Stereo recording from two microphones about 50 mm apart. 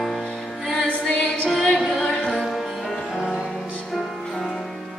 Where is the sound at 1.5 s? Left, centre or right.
Centre.